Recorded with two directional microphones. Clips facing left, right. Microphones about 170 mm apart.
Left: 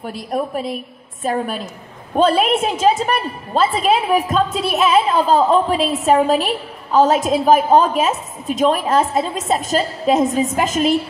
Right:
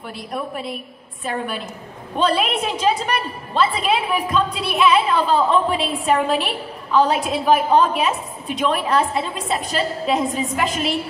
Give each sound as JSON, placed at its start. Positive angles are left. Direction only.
{"t": 0.0, "sound": "a woman's voice", "side_deg": 45}